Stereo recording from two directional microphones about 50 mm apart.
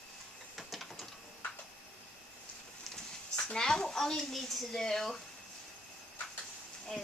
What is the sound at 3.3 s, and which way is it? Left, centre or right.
Speech, centre.